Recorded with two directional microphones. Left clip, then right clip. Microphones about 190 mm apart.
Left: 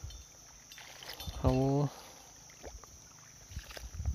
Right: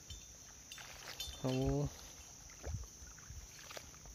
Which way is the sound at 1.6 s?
20° left (ahead or behind).